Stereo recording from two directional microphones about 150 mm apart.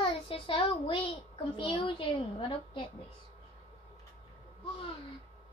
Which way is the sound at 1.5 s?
35° left (ahead or behind).